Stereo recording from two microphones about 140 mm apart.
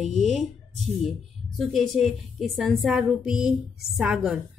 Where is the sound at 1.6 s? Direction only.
Centre (ahead or behind).